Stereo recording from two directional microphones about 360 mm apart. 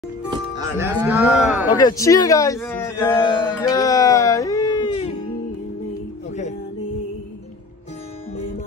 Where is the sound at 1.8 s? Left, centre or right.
Centre.